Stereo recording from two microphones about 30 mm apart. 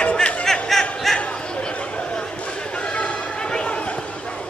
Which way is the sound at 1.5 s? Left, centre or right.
Left.